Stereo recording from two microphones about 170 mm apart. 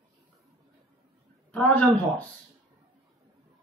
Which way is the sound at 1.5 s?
10° left (ahead or behind).